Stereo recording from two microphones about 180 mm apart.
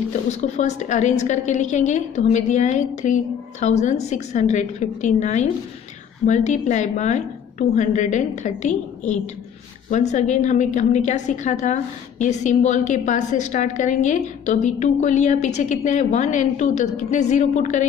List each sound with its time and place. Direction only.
0.3 s a woman's voice: 40° left (ahead or behind)